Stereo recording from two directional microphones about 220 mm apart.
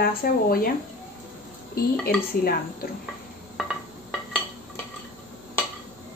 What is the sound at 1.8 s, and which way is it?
Speech, 45° left (ahead or behind).